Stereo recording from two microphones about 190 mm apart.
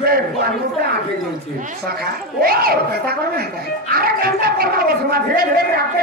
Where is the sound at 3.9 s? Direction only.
50° right (ahead or behind).